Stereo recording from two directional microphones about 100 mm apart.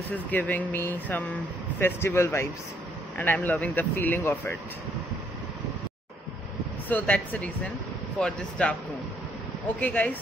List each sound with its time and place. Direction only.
0.3 s speech: 15° left (ahead or behind)
6.9 s speech: 15° left (ahead or behind)
9.8 s speech: 15° left (ahead or behind)